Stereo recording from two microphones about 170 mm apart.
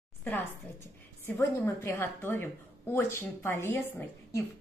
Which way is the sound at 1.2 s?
15° left (ahead or behind).